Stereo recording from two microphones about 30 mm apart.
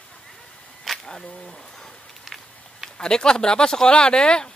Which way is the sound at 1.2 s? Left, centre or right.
Left.